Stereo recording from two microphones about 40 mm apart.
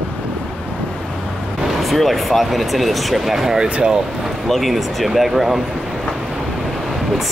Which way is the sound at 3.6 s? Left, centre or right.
Centre.